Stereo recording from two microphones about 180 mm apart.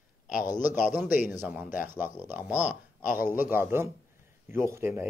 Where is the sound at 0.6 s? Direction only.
45° left (ahead or behind).